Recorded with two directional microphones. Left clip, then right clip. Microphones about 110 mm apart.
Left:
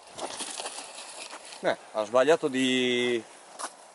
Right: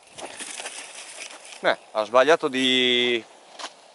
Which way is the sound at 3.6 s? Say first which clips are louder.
Right 2 dB; 10° right (ahead or behind).